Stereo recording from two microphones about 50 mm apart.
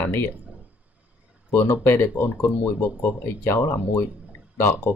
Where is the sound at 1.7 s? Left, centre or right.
Left.